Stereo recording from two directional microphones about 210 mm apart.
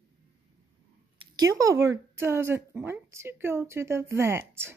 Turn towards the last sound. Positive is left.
turn(degrees=-10)  # may be behind; listen again after turning